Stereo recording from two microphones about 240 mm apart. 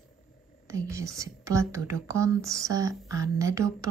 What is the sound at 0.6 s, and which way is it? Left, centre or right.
A woman's voice, centre.